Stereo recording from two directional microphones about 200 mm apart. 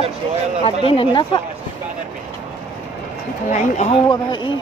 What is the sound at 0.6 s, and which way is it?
Speech, 25° left (ahead or behind).